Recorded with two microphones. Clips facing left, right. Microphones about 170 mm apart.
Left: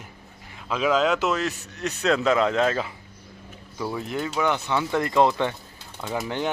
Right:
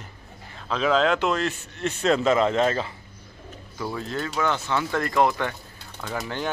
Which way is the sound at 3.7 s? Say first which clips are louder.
Left 1 dB; 15° left (ahead or behind).